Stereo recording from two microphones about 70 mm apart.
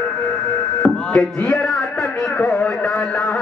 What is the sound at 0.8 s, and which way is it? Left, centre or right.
Chop, left.